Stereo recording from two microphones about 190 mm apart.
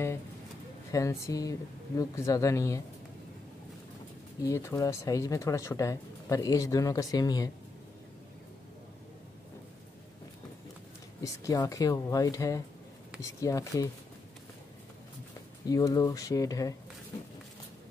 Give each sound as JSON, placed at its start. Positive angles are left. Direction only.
{"t": 0.9, "sound": "speech", "side_deg": 15}
{"t": 4.4, "sound": "speech", "side_deg": 15}
{"t": 11.2, "sound": "speech", "side_deg": 20}
{"t": 15.6, "sound": "speech", "side_deg": 20}